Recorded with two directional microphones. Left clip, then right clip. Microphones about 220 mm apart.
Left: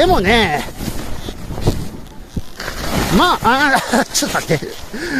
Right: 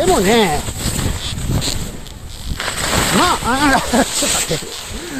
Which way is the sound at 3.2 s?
55° left (ahead or behind).